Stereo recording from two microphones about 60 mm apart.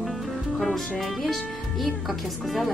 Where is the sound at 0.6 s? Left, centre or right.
Centre.